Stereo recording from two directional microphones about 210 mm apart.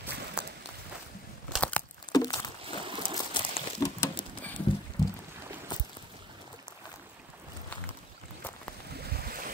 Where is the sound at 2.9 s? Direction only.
25° right (ahead or behind).